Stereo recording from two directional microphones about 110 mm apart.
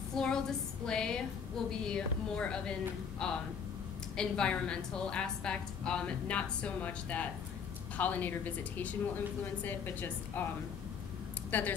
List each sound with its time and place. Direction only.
0.1 s a sound: 5° left (ahead or behind)
1.7 s a woman's voice: 5° left (ahead or behind)
11.5 s a woman's voice: 15° left (ahead or behind)